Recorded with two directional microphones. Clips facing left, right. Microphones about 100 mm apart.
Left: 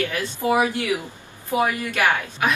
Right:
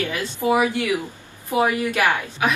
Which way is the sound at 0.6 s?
20° left (ahead or behind).